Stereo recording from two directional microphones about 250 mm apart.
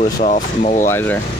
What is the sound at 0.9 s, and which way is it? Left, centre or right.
Speech, centre.